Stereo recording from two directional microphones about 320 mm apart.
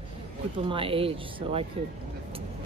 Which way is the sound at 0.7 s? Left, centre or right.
Centre.